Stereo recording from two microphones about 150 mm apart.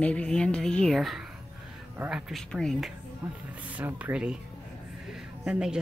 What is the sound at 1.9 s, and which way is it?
Speech, 15° right (ahead or behind).